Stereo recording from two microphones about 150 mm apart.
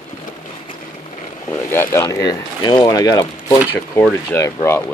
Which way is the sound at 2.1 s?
25° left (ahead or behind).